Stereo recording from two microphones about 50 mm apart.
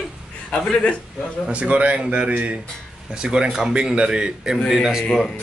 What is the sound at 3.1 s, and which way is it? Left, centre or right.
A man's voice, centre.